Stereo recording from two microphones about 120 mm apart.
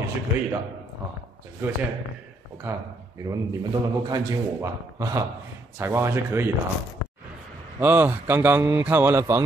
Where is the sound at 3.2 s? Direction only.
30° right (ahead or behind).